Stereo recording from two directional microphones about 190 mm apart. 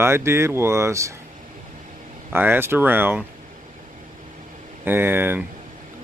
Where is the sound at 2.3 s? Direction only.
10° right (ahead or behind).